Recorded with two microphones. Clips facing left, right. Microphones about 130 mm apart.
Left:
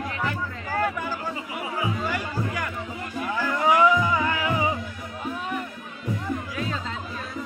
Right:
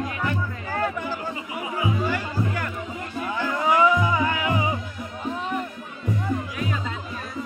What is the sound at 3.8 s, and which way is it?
Music, 15° right (ahead or behind).